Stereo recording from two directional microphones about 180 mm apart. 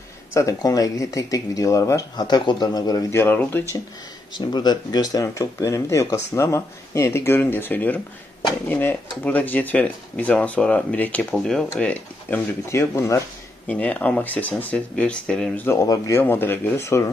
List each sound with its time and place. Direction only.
0.3 s speech: 15° left (ahead or behind)